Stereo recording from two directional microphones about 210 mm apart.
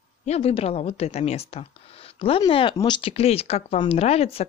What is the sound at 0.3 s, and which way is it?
Speech, 30° left (ahead or behind).